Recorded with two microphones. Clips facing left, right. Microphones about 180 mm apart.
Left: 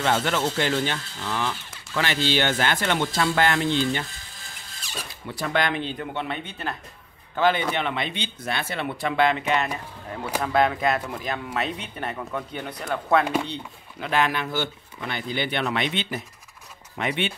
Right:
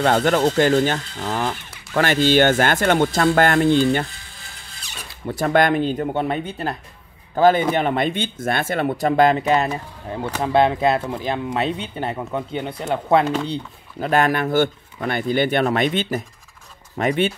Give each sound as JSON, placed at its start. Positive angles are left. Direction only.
{"t": 0.0, "sound": "speech", "side_deg": -45}
{"t": 5.2, "sound": "a man's voice", "side_deg": -45}
{"t": 13.2, "sound": "speech", "side_deg": 10}
{"t": 13.5, "sound": "a man's voice", "side_deg": -40}